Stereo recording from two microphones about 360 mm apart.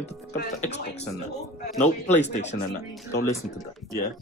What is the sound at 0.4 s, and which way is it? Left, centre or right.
Speech, left.